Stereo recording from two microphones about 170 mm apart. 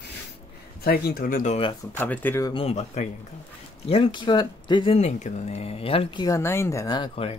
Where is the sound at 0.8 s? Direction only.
65° left (ahead or behind).